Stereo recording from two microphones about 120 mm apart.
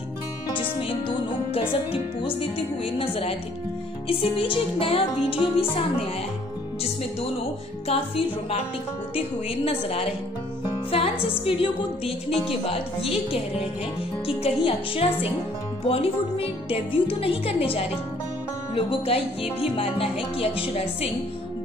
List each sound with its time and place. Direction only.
0.6 s music: 45° left (ahead or behind)
2.8 s a woman's voice: 50° left (ahead or behind)
7.9 s a woman's voice: 55° left (ahead or behind)
9.7 s a woman's voice: 55° left (ahead or behind)
10.6 s music: 50° left (ahead or behind)
11.4 s a woman's voice: 50° left (ahead or behind)